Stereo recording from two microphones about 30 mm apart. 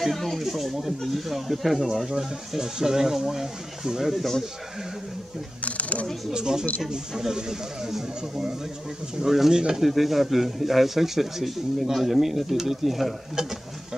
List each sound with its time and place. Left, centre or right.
0.0 s speech: centre
5.6 s speech: left
6.3 s speech: right
9.5 s speech: right
9.8 s speech: centre